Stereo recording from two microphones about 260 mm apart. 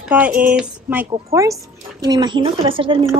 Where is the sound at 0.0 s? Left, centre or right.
Centre.